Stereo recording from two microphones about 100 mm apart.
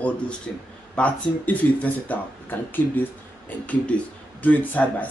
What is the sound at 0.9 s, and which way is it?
Speech, 15° left (ahead or behind).